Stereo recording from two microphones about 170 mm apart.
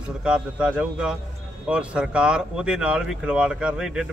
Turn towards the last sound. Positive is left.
turn(degrees=-5)  # may be behind; listen again after turning